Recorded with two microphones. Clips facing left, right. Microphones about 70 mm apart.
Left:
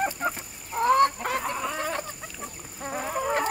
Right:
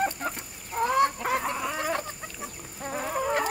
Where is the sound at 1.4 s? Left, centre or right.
Centre.